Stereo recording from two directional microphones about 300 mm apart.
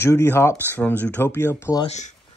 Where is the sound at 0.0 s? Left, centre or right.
Centre.